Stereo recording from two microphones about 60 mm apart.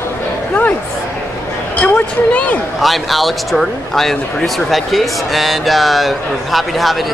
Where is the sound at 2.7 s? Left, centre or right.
Centre.